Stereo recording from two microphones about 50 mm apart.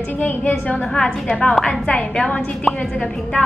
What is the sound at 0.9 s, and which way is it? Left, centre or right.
A woman's voice, centre.